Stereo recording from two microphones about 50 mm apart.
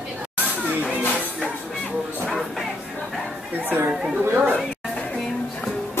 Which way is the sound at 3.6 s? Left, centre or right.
Right.